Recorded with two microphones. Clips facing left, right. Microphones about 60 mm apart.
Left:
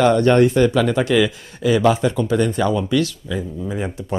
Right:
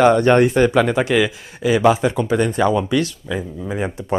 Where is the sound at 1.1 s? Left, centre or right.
Centre.